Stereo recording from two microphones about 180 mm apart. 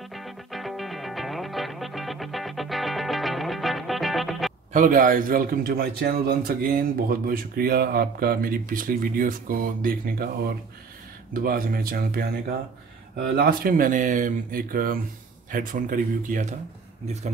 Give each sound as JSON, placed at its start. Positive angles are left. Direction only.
{"t": 0.1, "sound": "music", "side_deg": 0}
{"t": 4.7, "sound": "a man's voice", "side_deg": -45}
{"t": 13.4, "sound": "a man's voice", "side_deg": -55}